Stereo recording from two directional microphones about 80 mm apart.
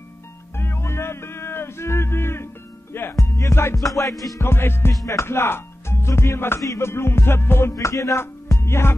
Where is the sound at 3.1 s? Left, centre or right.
Left.